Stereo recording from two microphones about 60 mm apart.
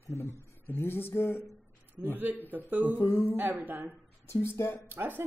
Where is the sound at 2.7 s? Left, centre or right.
Right.